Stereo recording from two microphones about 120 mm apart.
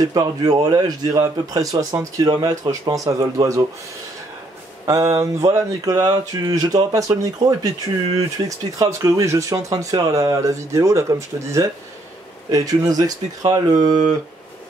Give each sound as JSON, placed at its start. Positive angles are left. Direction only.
{"t": 0.0, "sound": "speech", "side_deg": -30}
{"t": 4.8, "sound": "speech", "side_deg": -30}